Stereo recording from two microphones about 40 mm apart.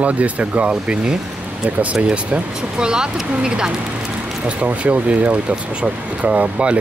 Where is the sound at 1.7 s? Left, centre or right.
Right.